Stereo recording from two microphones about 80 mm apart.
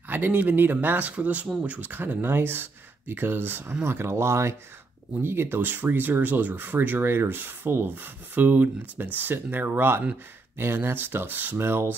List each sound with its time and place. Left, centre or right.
0.1 s speech: right